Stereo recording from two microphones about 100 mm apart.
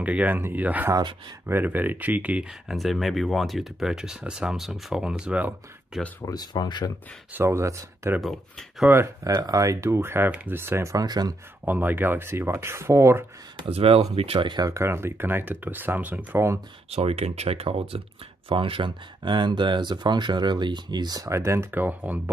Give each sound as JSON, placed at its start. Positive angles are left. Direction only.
{"t": 0.0, "sound": "speech", "side_deg": -15}
{"t": 2.7, "sound": "speech", "side_deg": 0}
{"t": 6.2, "sound": "speech", "side_deg": 40}
{"t": 7.3, "sound": "speech", "side_deg": -30}
{"t": 8.2, "sound": "speech", "side_deg": 0}
{"t": 8.8, "sound": "speech", "side_deg": -25}
{"t": 9.2, "sound": "speech", "side_deg": -35}
{"t": 11.6, "sound": "speech", "side_deg": -20}
{"t": 13.7, "sound": "speech", "side_deg": -75}
{"t": 14.7, "sound": "speech", "side_deg": -25}
{"t": 16.9, "sound": "speech", "side_deg": -90}
{"t": 18.5, "sound": "speech", "side_deg": -60}
{"t": 21.3, "sound": "speech", "side_deg": -30}